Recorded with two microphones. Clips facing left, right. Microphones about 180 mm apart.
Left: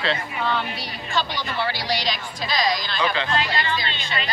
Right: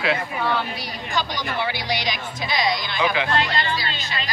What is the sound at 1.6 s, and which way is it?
Speech, 15° right (ahead or behind).